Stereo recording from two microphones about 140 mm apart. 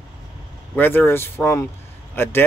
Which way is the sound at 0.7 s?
15° left (ahead or behind).